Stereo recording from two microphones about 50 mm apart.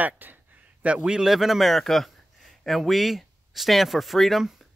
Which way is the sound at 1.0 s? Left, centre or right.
Centre.